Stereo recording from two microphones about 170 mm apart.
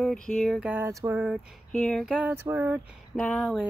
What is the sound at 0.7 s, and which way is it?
Speech, 15° right (ahead or behind).